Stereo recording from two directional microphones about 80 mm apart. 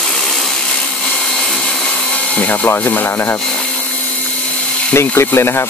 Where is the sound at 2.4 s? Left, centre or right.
Left.